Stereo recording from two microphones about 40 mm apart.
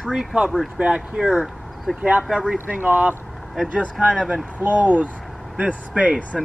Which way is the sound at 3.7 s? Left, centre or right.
Right.